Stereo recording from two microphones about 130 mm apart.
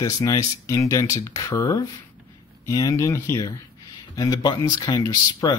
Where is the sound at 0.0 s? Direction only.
30° left (ahead or behind).